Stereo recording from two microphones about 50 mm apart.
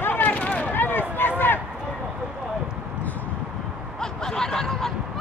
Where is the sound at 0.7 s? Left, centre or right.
Left.